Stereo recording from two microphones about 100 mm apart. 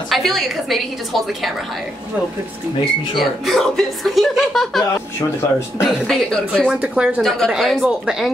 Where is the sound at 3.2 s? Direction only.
Centre (ahead or behind).